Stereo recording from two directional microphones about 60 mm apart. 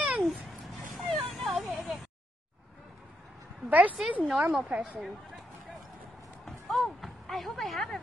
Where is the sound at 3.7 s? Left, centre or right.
Right.